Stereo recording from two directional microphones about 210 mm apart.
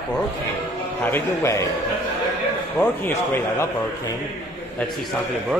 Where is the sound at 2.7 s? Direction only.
10° left (ahead or behind).